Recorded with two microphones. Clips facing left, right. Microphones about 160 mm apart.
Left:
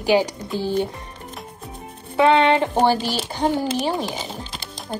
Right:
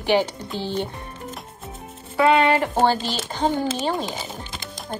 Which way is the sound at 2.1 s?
20° left (ahead or behind).